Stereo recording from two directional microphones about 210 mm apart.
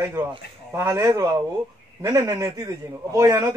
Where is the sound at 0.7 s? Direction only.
15° right (ahead or behind).